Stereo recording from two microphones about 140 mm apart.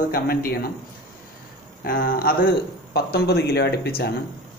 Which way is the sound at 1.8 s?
90° left.